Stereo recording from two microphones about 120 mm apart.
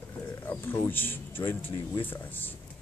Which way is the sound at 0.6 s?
20° left (ahead or behind).